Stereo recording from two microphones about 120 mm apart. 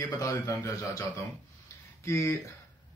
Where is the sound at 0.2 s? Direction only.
30° left (ahead or behind).